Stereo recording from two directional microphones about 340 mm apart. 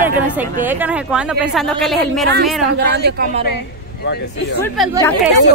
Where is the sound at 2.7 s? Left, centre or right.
Right.